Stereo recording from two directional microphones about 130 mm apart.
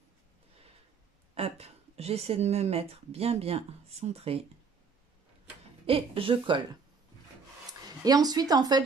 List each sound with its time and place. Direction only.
1.3 s speech: 50° right (ahead or behind)
5.9 s speech: 45° right (ahead or behind)
8.0 s speech: 30° right (ahead or behind)